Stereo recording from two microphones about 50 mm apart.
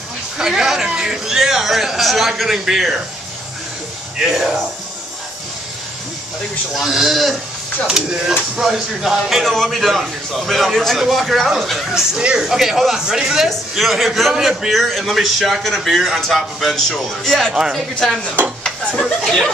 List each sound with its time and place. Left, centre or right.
0.4 s a man's voice: centre
6.7 s a man's voice: centre
12.2 s speech: centre
12.4 s a man's voice: centre